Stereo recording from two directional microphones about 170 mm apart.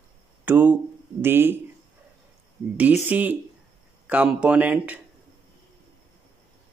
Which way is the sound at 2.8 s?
10° right (ahead or behind).